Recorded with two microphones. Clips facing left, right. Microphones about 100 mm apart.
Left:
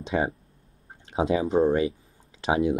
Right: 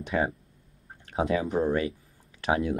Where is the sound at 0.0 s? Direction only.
20° left (ahead or behind).